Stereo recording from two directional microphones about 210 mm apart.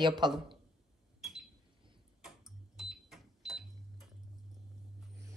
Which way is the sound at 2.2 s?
Centre (ahead or behind).